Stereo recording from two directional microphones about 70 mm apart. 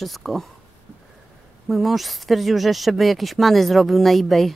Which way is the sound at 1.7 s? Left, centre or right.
Centre.